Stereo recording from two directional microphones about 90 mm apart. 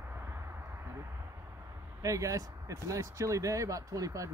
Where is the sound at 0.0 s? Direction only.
30° right (ahead or behind).